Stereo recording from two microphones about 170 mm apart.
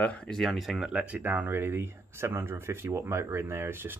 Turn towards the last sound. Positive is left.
turn(degrees=-15)  # may be behind; listen again after turning